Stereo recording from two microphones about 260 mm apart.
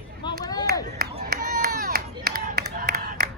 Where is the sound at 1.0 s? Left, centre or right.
Right.